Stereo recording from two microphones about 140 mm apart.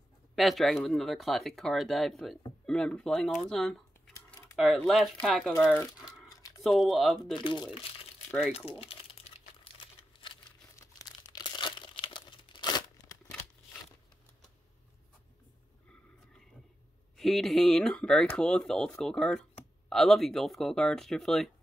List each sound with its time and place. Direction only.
0.4 s speech: centre (ahead or behind)
5.9 s crumpling: 25° left (ahead or behind)
6.6 s speech: centre (ahead or behind)
7.3 s speech: 35° left (ahead or behind)
8.5 s crumpling: 45° left (ahead or behind)
10.8 s crumpling: 25° left (ahead or behind)
17.2 s speech: centre (ahead or behind)